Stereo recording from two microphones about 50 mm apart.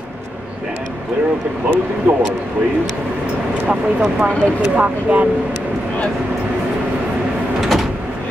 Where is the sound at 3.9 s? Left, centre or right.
Right.